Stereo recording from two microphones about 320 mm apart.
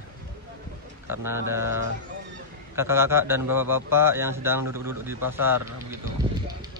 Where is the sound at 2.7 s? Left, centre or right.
Centre.